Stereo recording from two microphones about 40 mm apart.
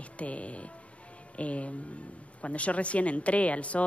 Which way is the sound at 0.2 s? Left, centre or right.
Left.